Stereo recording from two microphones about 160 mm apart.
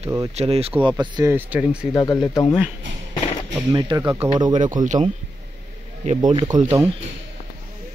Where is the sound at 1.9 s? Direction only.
25° left (ahead or behind).